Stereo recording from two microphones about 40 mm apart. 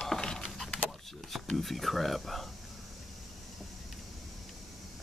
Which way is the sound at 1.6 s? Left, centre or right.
Centre.